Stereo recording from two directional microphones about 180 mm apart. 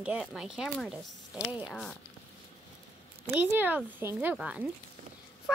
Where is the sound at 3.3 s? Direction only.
10° right (ahead or behind).